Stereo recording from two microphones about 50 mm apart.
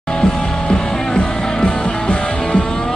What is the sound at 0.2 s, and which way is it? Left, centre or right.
Music, centre.